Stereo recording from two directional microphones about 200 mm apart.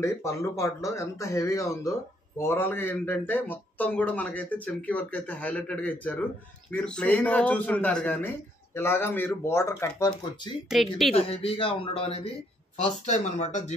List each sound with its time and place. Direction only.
0.0 s speech: 15° left (ahead or behind)
10.7 s speech: centre (ahead or behind)
11.1 s a man's voice: 30° left (ahead or behind)